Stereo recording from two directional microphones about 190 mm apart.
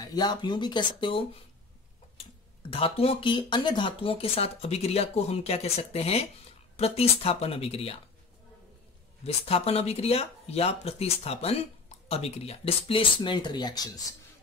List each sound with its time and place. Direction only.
0.0 s speech: 20° left (ahead or behind)
2.7 s speech: 30° left (ahead or behind)
9.2 s speech: 30° left (ahead or behind)